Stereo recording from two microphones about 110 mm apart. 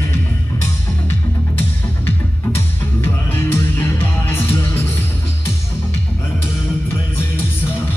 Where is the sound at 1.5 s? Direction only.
20° left (ahead or behind).